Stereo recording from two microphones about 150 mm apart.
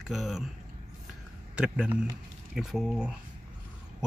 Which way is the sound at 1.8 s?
5° right (ahead or behind).